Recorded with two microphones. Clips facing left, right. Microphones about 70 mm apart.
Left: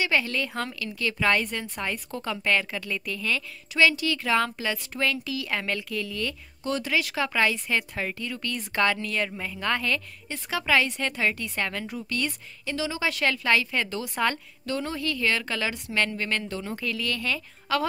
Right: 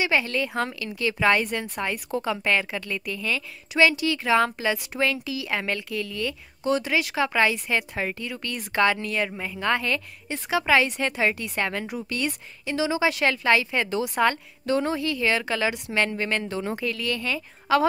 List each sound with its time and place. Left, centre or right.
0.0 s a woman's voice: centre
15.0 s a woman's voice: centre